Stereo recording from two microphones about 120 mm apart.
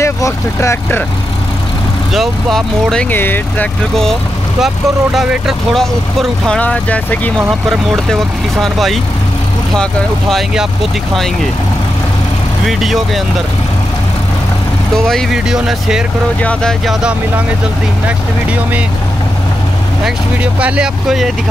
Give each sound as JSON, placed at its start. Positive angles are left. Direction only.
{"t": 0.0, "sound": "speech", "side_deg": 25}
{"t": 2.1, "sound": "speech", "side_deg": 5}
{"t": 3.1, "sound": "speech", "side_deg": 15}
{"t": 3.9, "sound": "speech", "side_deg": 0}
{"t": 10.3, "sound": "speech", "side_deg": -5}
{"t": 12.6, "sound": "speech", "side_deg": 0}
{"t": 15.0, "sound": "speech", "side_deg": 5}
{"t": 16.3, "sound": "speech", "side_deg": 10}
{"t": 20.6, "sound": "speech", "side_deg": -10}